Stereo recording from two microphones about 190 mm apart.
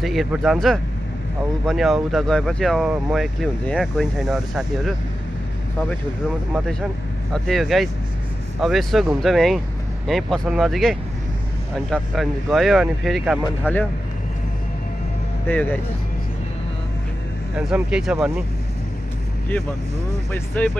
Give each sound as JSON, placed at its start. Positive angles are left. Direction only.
{"t": 0.0, "sound": "speech", "side_deg": 0}
{"t": 7.3, "sound": "speech", "side_deg": 0}
{"t": 13.7, "sound": "speech", "side_deg": 10}
{"t": 15.4, "sound": "speech", "side_deg": 10}
{"t": 17.6, "sound": "speech", "side_deg": -5}
{"t": 20.3, "sound": "speech", "side_deg": 5}